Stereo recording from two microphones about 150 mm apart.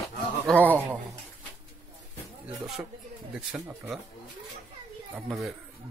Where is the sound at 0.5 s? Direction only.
10° left (ahead or behind).